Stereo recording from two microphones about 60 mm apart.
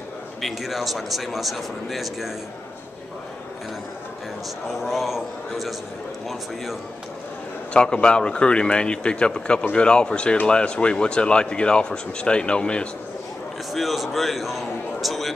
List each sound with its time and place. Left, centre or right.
0.4 s speech: centre
4.7 s speech: centre
7.7 s speech: centre
13.7 s speech: centre